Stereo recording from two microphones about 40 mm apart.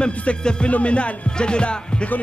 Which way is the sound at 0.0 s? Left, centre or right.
Left.